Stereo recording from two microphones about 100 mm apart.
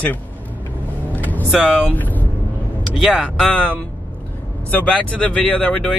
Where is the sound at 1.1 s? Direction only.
15° left (ahead or behind).